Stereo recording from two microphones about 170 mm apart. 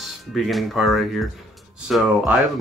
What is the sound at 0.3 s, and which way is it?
Speech, centre (ahead or behind).